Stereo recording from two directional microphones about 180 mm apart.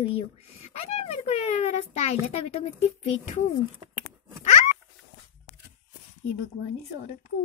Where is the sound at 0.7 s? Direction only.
35° left (ahead or behind).